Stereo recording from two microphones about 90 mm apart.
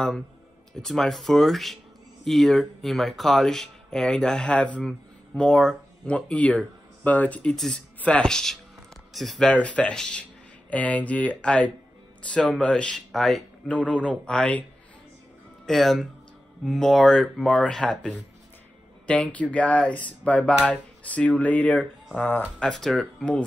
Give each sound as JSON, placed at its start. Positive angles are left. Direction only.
{"t": 0.7, "sound": "speech", "side_deg": 5}
{"t": 7.5, "sound": "speech", "side_deg": 5}
{"t": 9.5, "sound": "speech", "side_deg": 15}
{"t": 13.7, "sound": "speech", "side_deg": 15}
{"t": 15.6, "sound": "speech", "side_deg": 0}
{"t": 22.6, "sound": "speech", "side_deg": 5}